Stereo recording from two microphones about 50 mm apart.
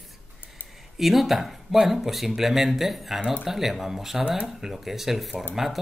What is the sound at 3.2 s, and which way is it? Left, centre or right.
Speech, centre.